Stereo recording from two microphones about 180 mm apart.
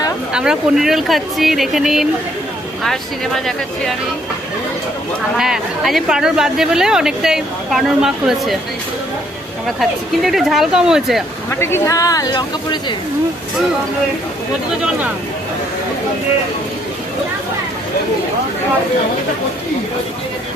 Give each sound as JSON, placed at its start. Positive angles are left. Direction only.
{"t": 0.3, "sound": "speech", "side_deg": -5}
{"t": 5.4, "sound": "speech", "side_deg": 0}
{"t": 9.8, "sound": "speech", "side_deg": 0}
{"t": 11.6, "sound": "speech", "side_deg": 15}